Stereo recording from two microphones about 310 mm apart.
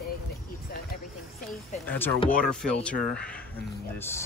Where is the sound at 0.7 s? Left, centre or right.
Left.